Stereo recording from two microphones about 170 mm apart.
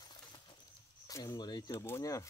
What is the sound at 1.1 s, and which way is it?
Speech, 25° left (ahead or behind).